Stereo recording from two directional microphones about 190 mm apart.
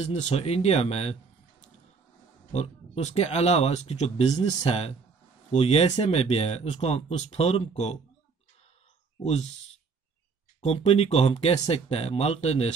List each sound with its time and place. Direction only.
0.1 s speech: 35° left (ahead or behind)
2.5 s speech: 35° left (ahead or behind)
9.2 s speech: 35° left (ahead or behind)
10.6 s speech: 30° left (ahead or behind)